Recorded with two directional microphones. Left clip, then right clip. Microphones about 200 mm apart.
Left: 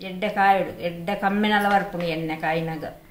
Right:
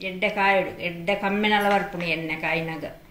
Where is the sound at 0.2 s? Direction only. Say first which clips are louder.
Left 2 dB; 20° left (ahead or behind).